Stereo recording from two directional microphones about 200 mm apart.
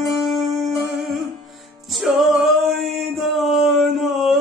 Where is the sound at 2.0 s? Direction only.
Centre (ahead or behind).